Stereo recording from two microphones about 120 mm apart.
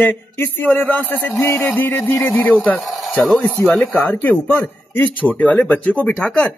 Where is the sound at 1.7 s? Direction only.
15° left (ahead or behind).